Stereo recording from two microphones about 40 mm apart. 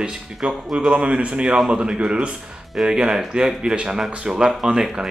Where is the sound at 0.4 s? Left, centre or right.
Right.